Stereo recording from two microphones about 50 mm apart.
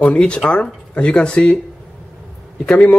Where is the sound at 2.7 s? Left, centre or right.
Left.